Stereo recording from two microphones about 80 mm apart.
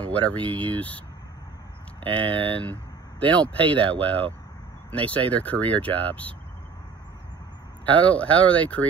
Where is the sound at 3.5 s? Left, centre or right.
Right.